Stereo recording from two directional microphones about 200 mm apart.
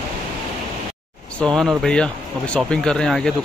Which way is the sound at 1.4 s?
5° left (ahead or behind).